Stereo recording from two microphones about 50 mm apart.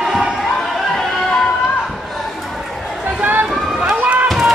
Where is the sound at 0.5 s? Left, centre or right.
Centre.